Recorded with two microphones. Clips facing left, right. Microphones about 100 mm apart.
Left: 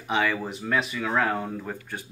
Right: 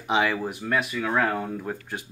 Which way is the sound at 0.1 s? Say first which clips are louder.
Right 2 dB; 15° right (ahead or behind).